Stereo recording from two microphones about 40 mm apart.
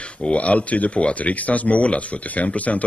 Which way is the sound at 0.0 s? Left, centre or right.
Left.